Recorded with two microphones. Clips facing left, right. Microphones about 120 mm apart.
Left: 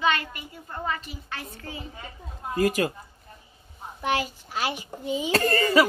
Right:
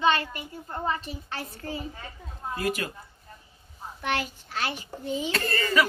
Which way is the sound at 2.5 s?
40° left (ahead or behind).